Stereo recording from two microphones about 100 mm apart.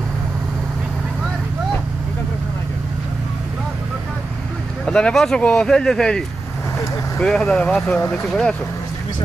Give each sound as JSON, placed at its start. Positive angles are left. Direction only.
{"t": 4.8, "sound": "speech", "side_deg": 10}
{"t": 8.0, "sound": "speech", "side_deg": 25}
{"t": 8.3, "sound": "speech", "side_deg": 5}